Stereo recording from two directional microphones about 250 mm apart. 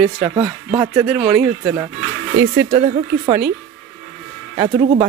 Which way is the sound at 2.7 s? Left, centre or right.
Right.